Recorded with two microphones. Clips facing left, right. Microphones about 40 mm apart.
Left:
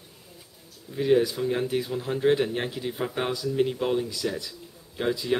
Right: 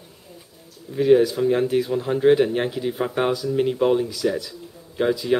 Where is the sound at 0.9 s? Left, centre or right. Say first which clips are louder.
Right 6 dB; centre.